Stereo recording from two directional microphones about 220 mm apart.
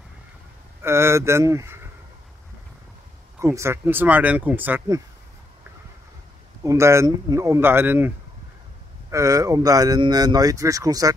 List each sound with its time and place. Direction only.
0.8 s speech: 10° right (ahead or behind)
3.3 s speech: 10° right (ahead or behind)
6.6 s speech: 15° right (ahead or behind)
9.1 s speech: 15° right (ahead or behind)